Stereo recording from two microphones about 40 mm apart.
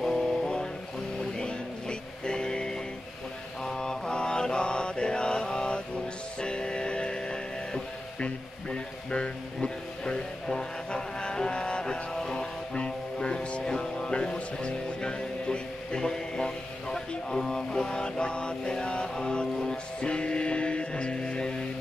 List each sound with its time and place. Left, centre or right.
0.0 s a sound: centre
1.4 s music: left
3.6 s mantra: centre
6.4 s music: left
10.4 s vehicle: centre
12.7 s music: left